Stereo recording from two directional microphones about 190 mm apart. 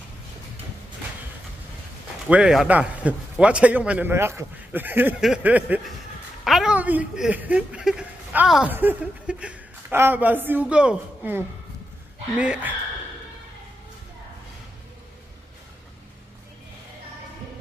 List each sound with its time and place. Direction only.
2.2 s a woman's voice: 5° right (ahead or behind)